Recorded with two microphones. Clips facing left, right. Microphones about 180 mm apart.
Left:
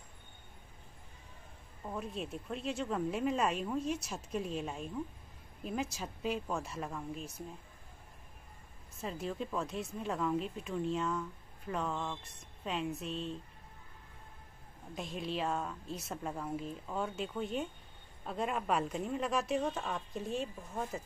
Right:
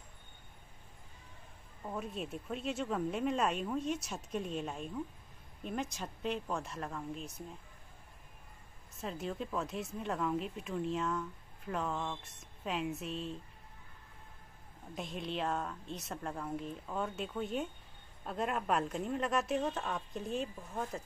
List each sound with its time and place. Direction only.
1.8 s speech: centre (ahead or behind)
9.0 s speech: centre (ahead or behind)
15.0 s speech: centre (ahead or behind)